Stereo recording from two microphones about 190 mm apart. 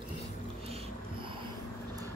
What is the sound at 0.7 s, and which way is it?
Music, 30° right (ahead or behind).